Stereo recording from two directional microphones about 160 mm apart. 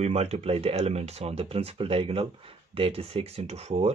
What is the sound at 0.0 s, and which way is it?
Speech, 40° right (ahead or behind).